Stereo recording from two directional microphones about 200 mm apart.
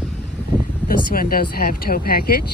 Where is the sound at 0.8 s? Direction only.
45° left (ahead or behind).